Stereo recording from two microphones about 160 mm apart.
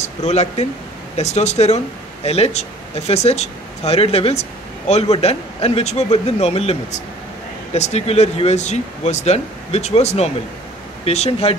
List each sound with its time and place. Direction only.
0.0 s speech: 45° left (ahead or behind)